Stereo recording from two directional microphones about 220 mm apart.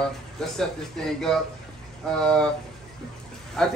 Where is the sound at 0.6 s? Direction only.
Centre (ahead or behind).